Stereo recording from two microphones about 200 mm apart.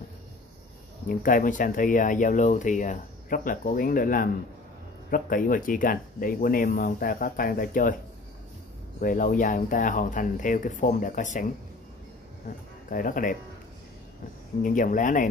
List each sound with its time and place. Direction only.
1.0 s speech: 45° left (ahead or behind)
9.0 s speech: 40° left (ahead or behind)
12.9 s speech: 45° left (ahead or behind)
14.6 s speech: 40° left (ahead or behind)